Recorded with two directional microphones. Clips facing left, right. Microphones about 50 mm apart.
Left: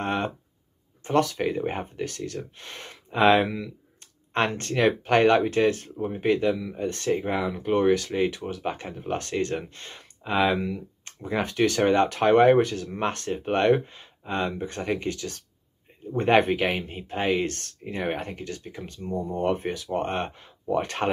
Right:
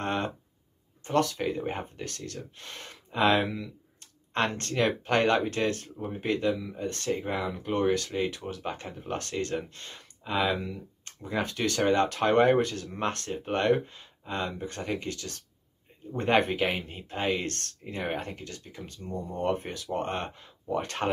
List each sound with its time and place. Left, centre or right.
0.0 s a sound: left
1.1 s speech: centre
4.6 s speech: left
5.4 s speech: centre
16.7 s speech: centre
18.2 s speech: left
19.3 s speech: centre